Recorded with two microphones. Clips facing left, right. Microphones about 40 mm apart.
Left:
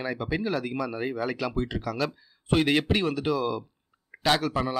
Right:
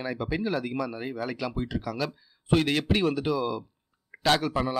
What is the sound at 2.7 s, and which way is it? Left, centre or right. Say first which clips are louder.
Speech: left 1 dB; centre.